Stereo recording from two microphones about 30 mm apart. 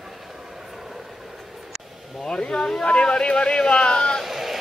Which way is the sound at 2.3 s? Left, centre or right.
Left.